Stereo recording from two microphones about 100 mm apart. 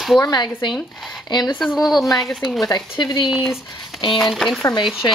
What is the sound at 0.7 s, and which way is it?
Speech, centre (ahead or behind).